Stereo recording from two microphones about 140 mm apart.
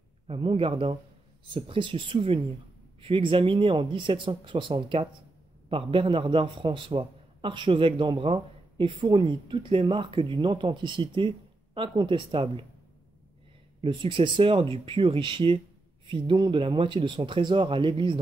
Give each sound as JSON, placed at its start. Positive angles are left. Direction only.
{"t": 0.3, "sound": "a man's voice", "side_deg": -40}
{"t": 13.7, "sound": "a man's voice", "side_deg": -35}